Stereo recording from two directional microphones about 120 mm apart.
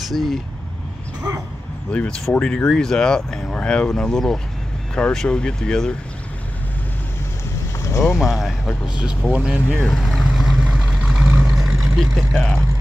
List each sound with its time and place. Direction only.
0.1 s speech: centre (ahead or behind)
1.9 s speech: 10° left (ahead or behind)
8.2 s speech: centre (ahead or behind)
10.2 s vehicle: centre (ahead or behind)
12.4 s speech: 15° left (ahead or behind)